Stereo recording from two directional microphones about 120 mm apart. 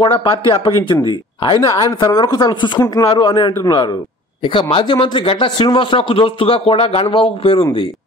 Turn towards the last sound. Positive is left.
turn(degrees=45)  # may be behind; listen again after turning